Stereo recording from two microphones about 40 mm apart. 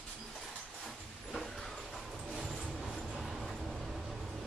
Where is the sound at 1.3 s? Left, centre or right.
Centre.